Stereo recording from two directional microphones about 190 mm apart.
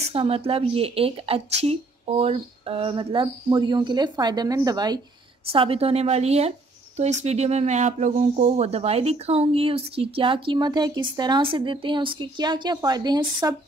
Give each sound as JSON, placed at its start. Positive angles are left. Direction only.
{"t": 0.1, "sound": "speech", "side_deg": -30}